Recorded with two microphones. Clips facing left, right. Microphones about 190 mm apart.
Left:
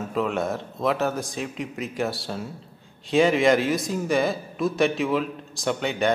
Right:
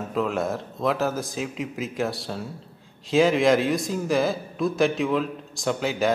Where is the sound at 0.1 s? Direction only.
Centre (ahead or behind).